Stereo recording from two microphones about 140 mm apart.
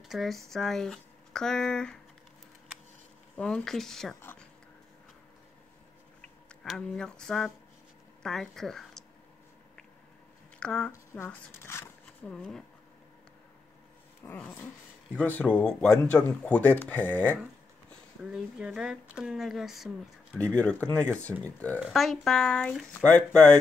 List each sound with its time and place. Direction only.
0.1 s speech: centre (ahead or behind)
3.3 s speech: 5° left (ahead or behind)
6.2 s speech: 5° left (ahead or behind)
10.6 s speech: 5° left (ahead or behind)
11.2 s a sound: 15° left (ahead or behind)
12.4 s speech: 5° left (ahead or behind)
14.4 s speech: 10° left (ahead or behind)
18.3 s speech: 5° right (ahead or behind)
20.5 s speech: 10° left (ahead or behind)